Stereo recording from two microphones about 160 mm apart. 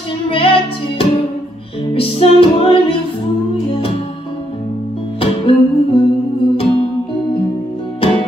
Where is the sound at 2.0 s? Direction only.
35° left (ahead or behind).